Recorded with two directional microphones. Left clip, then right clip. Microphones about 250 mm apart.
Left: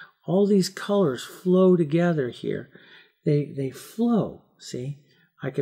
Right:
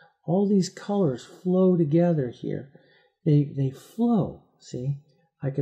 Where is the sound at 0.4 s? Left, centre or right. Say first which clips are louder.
Left 5 dB; right.